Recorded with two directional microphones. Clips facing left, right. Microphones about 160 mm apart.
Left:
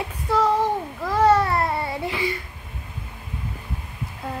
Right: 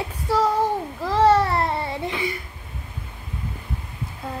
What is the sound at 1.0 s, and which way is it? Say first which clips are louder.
Babbling: right 1 dB; 30° right (ahead or behind).